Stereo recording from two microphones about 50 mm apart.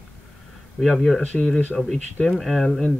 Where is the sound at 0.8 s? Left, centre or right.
Centre.